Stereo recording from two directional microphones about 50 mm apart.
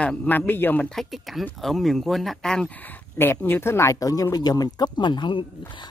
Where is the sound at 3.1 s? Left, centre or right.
Left.